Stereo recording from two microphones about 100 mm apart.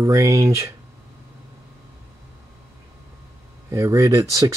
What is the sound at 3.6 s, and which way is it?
Speech, 30° right (ahead or behind).